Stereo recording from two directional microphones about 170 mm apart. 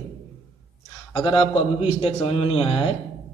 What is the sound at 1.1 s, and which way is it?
A man's voice, 30° left (ahead or behind).